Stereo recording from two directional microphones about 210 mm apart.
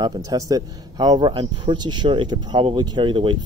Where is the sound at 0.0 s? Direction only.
15° right (ahead or behind).